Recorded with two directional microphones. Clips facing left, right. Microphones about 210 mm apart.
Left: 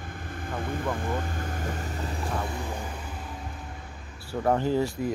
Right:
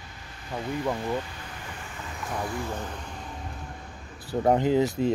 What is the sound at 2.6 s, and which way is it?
Speech, 10° left (ahead or behind).